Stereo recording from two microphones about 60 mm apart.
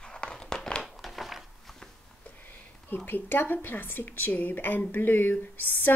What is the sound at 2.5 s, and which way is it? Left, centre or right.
Speech, left.